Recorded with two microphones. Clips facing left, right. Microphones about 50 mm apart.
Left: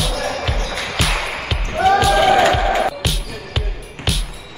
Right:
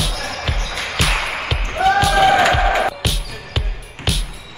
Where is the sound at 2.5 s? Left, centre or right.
Right.